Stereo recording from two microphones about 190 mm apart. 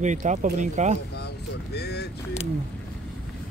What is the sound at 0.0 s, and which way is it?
Speech, 40° right (ahead or behind).